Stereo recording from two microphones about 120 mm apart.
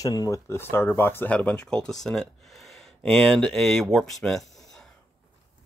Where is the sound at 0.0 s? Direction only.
30° left (ahead or behind); by 4.8 s centre (ahead or behind).